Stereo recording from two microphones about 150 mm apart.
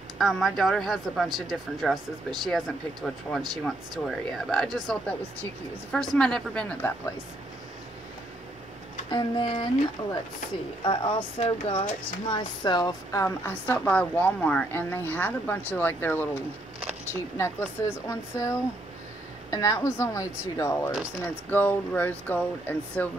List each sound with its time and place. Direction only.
0.2 s speech: centre (ahead or behind)
3.3 s speech: 5° left (ahead or behind)
9.1 s speech: 35° left (ahead or behind)
12.3 s speech: 30° left (ahead or behind)
13.5 s a woman's voice: 10° left (ahead or behind)
17.4 s speech: 20° left (ahead or behind)
19.5 s a woman's voice: 20° left (ahead or behind)